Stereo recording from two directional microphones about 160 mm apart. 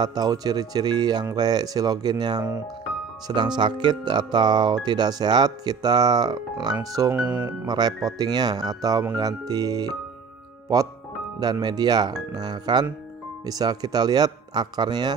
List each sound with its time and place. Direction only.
0.0 s speech: 25° right (ahead or behind)
7.2 s speech: 10° right (ahead or behind)
7.6 s speech: 25° right (ahead or behind)
11.3 s speech: 25° right (ahead or behind)